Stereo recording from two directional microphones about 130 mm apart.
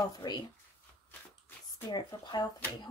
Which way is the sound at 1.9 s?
35° left (ahead or behind).